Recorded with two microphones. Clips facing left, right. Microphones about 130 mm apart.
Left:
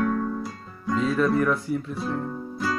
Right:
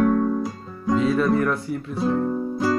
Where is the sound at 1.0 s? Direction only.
5° right (ahead or behind).